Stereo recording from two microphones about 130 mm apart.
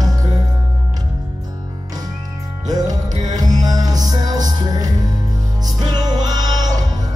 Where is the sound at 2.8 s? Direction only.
70° right (ahead or behind).